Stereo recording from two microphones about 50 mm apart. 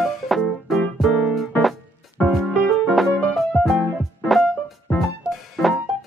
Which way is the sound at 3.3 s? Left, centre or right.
Centre.